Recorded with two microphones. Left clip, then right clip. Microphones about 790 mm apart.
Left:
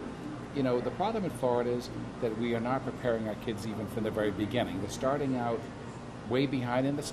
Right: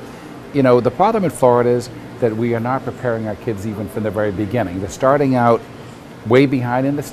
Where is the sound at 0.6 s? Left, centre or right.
Right.